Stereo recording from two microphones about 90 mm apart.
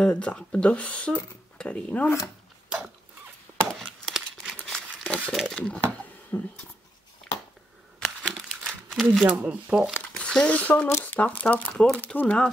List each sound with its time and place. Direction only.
0.0 s speech: 15° left (ahead or behind)
3.5 s a sound: 15° right (ahead or behind)
3.8 s a sound: 5° left (ahead or behind)
5.3 s speech: centre (ahead or behind)
6.3 s speech: 25° left (ahead or behind)
8.0 s crumpling: 5° left (ahead or behind)
9.3 s speech: 10° right (ahead or behind)
10.1 s speech: 10° left (ahead or behind)